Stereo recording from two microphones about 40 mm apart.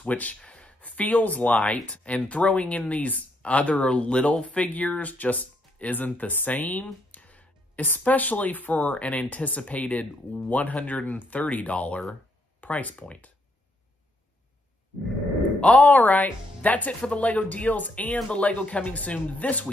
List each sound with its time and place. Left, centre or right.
0.0 s speech: left
0.4 s speech: left
7.1 s music: left
8.0 s speech: left
15.6 s speech: left